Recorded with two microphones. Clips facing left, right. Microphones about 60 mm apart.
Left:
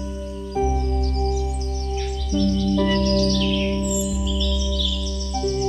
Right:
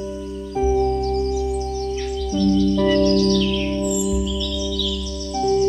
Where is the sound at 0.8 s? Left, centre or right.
Right.